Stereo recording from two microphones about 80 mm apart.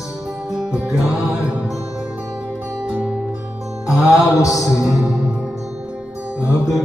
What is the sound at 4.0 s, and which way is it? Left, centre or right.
Mantra, left.